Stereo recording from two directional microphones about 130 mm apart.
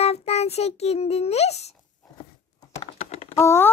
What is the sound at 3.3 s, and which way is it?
Speech, 20° left (ahead or behind).